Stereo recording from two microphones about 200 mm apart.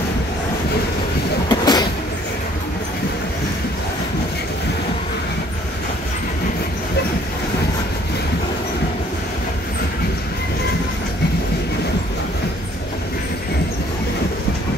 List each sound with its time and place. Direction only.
1.5 s train: 20° left (ahead or behind)